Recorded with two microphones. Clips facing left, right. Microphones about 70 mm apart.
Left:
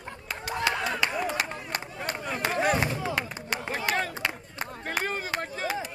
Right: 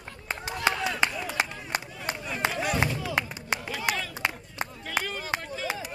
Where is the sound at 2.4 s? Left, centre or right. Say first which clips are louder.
Left 3 dB; left.